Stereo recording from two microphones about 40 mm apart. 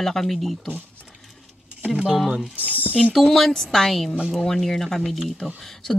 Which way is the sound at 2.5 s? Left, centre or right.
Right.